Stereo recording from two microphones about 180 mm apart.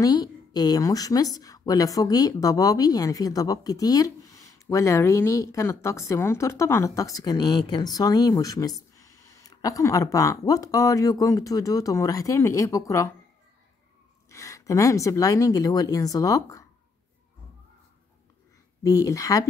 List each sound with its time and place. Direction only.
0.0 s speech: 20° left (ahead or behind)
14.3 s speech: 15° left (ahead or behind)
18.8 s speech: 20° left (ahead or behind)